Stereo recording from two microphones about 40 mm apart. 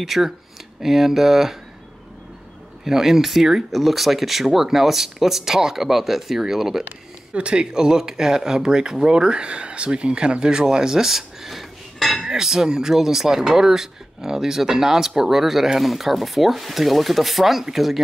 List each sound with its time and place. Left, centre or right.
0.0 s speech: centre
2.8 s speech: centre
7.3 s speech: right; by 12.3 s centre
12.3 s speech: centre